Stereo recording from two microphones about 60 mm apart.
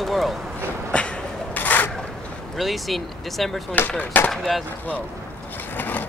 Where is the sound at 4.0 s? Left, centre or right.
Left.